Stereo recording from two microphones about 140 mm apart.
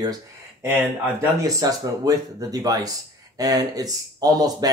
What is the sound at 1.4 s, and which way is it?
Speech, 25° right (ahead or behind).